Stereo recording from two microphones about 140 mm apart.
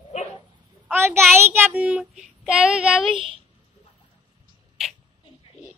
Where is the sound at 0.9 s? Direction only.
15° right (ahead or behind).